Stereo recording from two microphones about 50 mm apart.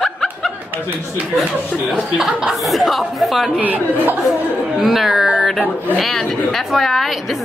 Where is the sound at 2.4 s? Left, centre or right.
Centre.